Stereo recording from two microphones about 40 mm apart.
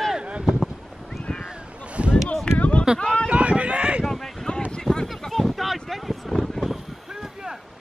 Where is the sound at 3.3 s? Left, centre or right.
Right.